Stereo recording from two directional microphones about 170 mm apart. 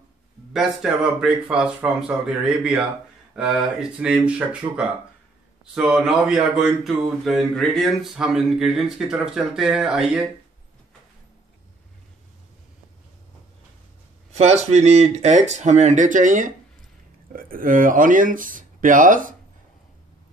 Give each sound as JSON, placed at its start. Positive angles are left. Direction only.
{"t": 0.5, "sound": "speech", "side_deg": -5}
{"t": 14.3, "sound": "speech", "side_deg": -40}